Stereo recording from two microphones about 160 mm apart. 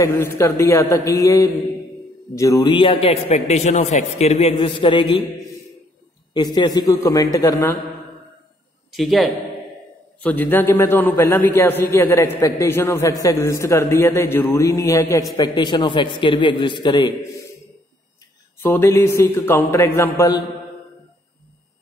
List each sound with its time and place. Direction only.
0.0 s a man's voice: 20° left (ahead or behind)
8.9 s a man's voice: centre (ahead or behind)
10.2 s a man's voice: 10° left (ahead or behind); by 17.1 s 25° left (ahead or behind)
18.6 s a man's voice: 15° left (ahead or behind)